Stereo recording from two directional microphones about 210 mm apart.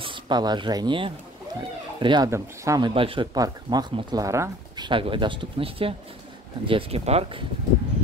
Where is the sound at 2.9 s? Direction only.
25° right (ahead or behind).